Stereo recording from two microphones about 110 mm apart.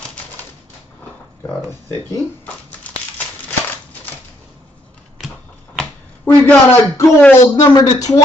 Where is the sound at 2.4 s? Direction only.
15° left (ahead or behind).